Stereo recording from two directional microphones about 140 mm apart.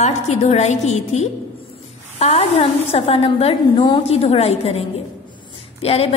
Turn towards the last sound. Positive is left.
turn(degrees=45)  # may be behind; listen again after turning